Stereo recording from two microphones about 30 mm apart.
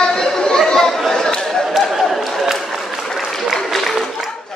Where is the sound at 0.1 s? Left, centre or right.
Left.